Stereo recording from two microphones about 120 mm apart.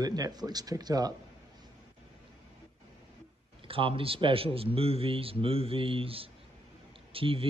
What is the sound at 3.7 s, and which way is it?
A man's voice, 50° right (ahead or behind).